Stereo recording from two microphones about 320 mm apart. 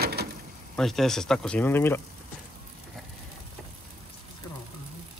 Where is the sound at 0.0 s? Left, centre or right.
Right.